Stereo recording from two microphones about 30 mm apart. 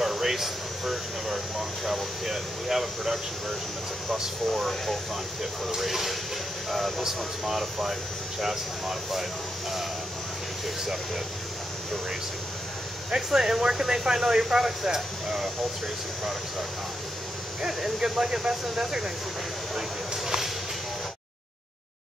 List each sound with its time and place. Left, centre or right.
0.0 s speech: centre
4.5 s speech: centre
13.4 s speech: centre
17.6 s speech: centre
18.2 s speech: centre